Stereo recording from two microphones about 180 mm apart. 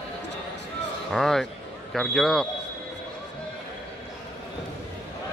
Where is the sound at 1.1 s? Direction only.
Centre (ahead or behind).